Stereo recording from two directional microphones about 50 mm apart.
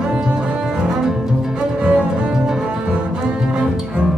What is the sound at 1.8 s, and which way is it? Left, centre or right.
Music, right.